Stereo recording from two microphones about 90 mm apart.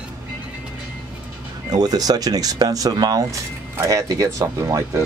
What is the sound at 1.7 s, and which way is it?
Speech, 45° right (ahead or behind).